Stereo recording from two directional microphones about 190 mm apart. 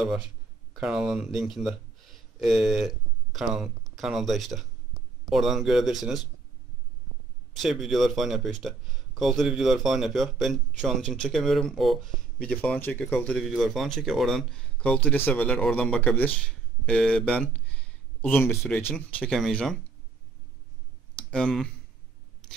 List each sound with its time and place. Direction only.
0.7 s speech: 5° right (ahead or behind)
7.5 s speech: centre (ahead or behind)
21.2 s speech: 5° left (ahead or behind)